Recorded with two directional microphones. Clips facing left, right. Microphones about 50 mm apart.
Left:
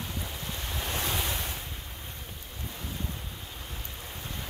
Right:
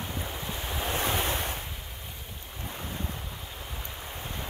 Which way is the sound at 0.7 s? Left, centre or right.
Right.